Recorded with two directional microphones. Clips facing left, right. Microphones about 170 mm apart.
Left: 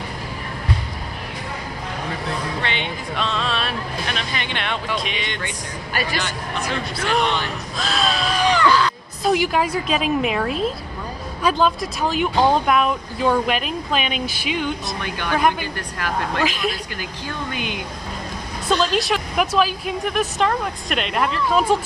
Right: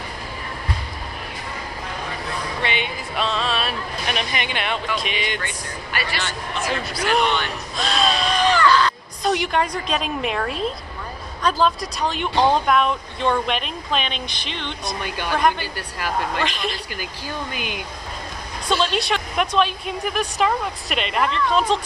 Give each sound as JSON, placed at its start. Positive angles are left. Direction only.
{"t": 2.6, "sound": "speech", "side_deg": -10}
{"t": 4.1, "sound": "speech", "side_deg": -15}
{"t": 5.9, "sound": "a man's voice", "side_deg": 40}
{"t": 7.0, "sound": "speech", "side_deg": 0}
{"t": 8.5, "sound": "a sound", "side_deg": 15}
{"t": 11.4, "sound": "speech", "side_deg": 0}
{"t": 18.7, "sound": "speech", "side_deg": 0}